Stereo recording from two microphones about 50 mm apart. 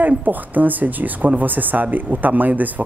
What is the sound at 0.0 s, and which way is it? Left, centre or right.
Speech, right.